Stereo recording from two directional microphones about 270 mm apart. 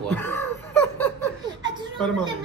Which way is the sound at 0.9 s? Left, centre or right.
Centre.